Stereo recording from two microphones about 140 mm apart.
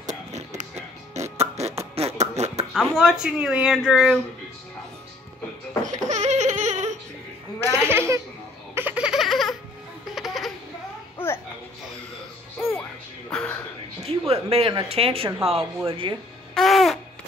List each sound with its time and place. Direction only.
0.0 s music: 55° right (ahead or behind)
2.0 s beatboxing: 50° right (ahead or behind)
2.7 s speech: 5° right (ahead or behind)
5.9 s laughter: 55° right (ahead or behind)
7.7 s speech: 20° right (ahead or behind)
8.7 s baby laughter: 10° right (ahead or behind)
10.1 s a sound: centre (ahead or behind)
11.1 s music: 15° left (ahead or behind)
13.3 s a sound: 5° left (ahead or behind)
14.0 s speech: 45° right (ahead or behind)
16.5 s babbling: centre (ahead or behind)